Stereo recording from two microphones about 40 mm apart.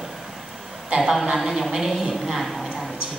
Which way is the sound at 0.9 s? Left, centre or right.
Centre.